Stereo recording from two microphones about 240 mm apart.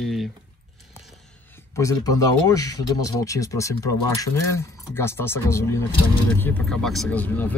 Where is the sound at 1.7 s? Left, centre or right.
Centre.